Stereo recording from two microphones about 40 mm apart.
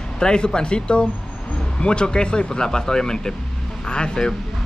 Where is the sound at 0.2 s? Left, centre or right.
Left.